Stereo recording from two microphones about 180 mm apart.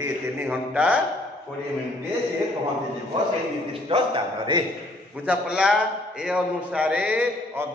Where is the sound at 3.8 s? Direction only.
30° right (ahead or behind).